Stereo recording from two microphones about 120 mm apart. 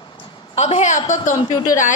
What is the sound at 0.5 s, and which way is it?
Speech, 65° left (ahead or behind).